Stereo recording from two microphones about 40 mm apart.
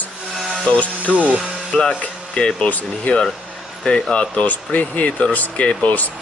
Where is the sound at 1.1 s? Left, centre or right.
Centre; by 6.1 s left.